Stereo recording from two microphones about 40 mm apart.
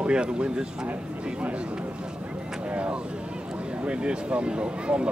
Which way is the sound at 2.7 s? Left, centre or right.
Right.